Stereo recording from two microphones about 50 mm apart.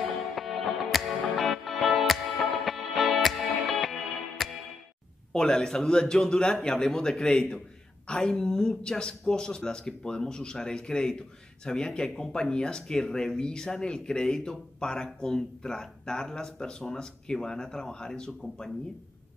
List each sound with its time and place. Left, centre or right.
0.4 s music: centre
5.3 s speech: centre